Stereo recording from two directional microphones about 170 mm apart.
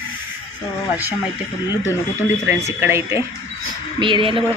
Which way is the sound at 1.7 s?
20° left (ahead or behind).